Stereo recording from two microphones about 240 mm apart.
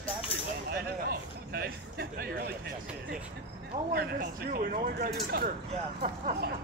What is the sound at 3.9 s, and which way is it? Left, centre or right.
Speech, right.